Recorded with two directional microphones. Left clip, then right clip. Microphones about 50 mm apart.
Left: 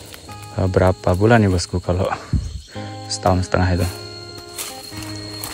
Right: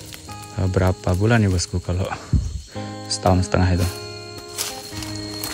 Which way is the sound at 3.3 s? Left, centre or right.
Right.